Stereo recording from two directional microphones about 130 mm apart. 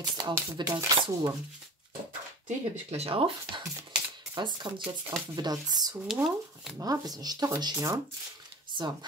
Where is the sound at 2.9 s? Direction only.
45° right (ahead or behind); by 5.6 s 30° right (ahead or behind).